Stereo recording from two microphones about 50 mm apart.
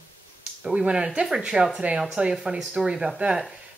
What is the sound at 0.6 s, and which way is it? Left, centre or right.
Speech, centre.